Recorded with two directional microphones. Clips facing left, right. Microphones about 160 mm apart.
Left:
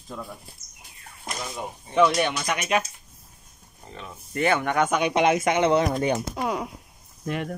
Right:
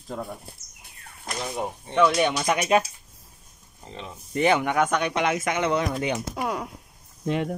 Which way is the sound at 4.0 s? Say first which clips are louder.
Right 2 dB; 20° right (ahead or behind).